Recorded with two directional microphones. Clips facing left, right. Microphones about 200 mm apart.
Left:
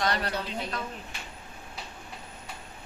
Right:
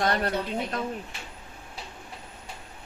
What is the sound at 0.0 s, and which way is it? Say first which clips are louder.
Speech: right 3 dB; 50° right (ahead or behind).